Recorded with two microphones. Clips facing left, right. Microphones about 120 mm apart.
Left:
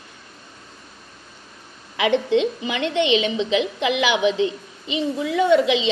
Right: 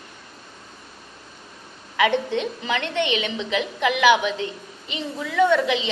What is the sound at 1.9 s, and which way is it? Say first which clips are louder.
A woman's voice: left 2 dB; 20° left (ahead or behind).